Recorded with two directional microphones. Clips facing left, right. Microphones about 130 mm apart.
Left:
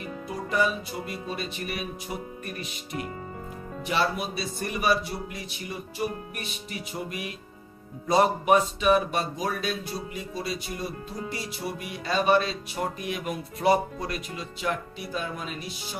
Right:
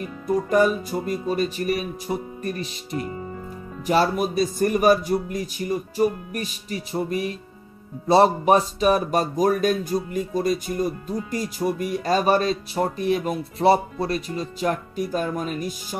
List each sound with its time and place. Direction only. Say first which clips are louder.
0.5 s speech: right 5 dB; 45° right (ahead or behind)